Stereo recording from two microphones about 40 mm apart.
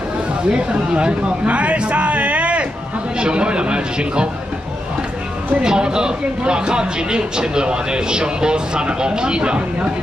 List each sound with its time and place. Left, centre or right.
0.5 s speech: right
5.6 s speech: centre